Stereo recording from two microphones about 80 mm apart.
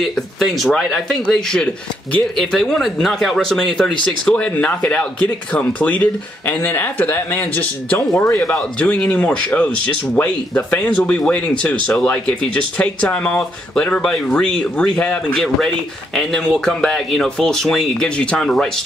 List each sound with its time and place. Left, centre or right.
0.0 s speech: centre; by 8.0 s left
8.3 s speech: centre
18.0 s speech: centre